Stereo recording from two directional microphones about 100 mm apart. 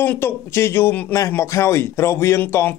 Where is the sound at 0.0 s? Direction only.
20° left (ahead or behind).